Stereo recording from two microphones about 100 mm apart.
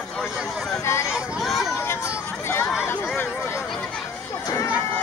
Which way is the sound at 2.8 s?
20° left (ahead or behind).